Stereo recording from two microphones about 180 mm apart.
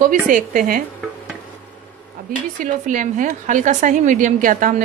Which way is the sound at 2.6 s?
45° right (ahead or behind).